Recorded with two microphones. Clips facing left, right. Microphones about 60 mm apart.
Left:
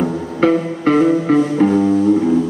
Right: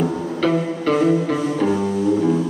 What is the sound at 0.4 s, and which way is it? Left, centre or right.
Music, left.